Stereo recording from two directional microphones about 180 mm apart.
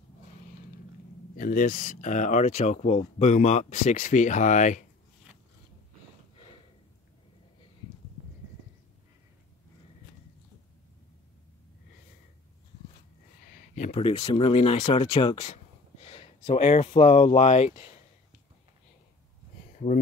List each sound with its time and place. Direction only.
1.3 s speech: 50° left (ahead or behind)
13.5 s speech: 45° left (ahead or behind); by 15.4 s 25° left (ahead or behind)
15.4 s speech: 35° left (ahead or behind)
19.8 s speech: 40° left (ahead or behind)